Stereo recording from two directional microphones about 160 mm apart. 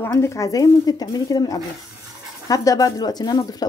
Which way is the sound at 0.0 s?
15° left (ahead or behind).